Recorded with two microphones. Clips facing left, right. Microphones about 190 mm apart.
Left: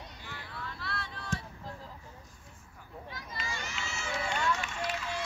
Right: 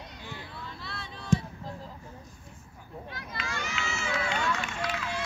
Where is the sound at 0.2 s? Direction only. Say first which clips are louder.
Right 1 dB; 20° right (ahead or behind).